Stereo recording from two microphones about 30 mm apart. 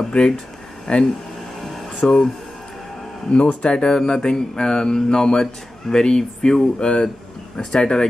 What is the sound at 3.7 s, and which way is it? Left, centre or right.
A man's voice, left.